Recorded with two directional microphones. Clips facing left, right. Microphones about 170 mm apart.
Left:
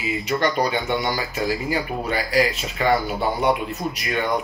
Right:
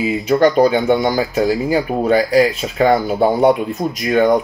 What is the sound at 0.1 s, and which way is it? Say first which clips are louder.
Speech: right 8 dB; 45° right (ahead or behind).